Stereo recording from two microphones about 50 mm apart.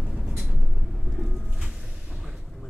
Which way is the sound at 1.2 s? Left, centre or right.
Centre.